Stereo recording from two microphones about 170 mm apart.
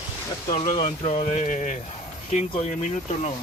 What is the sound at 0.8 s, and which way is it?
Speech, 45° left (ahead or behind).